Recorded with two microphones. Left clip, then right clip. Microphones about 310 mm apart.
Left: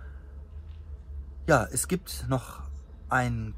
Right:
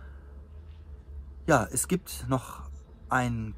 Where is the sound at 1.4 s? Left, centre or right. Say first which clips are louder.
Left 1 dB; centre.